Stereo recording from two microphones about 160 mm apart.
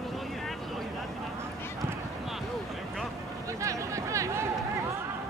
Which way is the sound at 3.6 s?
20° right (ahead or behind).